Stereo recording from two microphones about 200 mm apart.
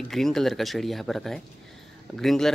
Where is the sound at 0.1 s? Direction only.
Centre (ahead or behind).